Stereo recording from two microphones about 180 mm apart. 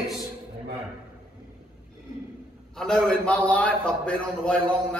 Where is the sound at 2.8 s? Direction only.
5° left (ahead or behind).